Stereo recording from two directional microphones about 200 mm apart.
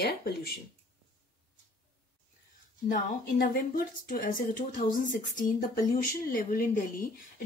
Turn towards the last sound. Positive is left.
turn(degrees=40)  # may be behind; listen again after turning